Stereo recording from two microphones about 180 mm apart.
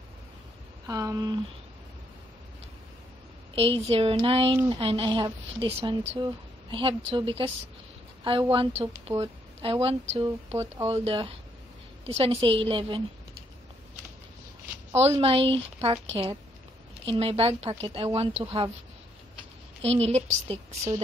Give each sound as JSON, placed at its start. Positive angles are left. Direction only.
{"t": 0.8, "sound": "a woman's voice", "side_deg": -20}
{"t": 3.5, "sound": "a woman's voice", "side_deg": -30}
{"t": 15.1, "sound": "speech", "side_deg": -30}
{"t": 19.8, "sound": "speech", "side_deg": -35}